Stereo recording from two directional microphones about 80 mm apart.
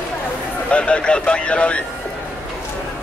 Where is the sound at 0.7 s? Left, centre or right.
Centre.